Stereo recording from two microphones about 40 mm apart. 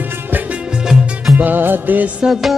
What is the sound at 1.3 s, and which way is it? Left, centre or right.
Music, right.